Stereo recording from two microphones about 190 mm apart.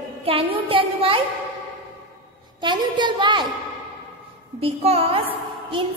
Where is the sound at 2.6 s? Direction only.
25° right (ahead or behind).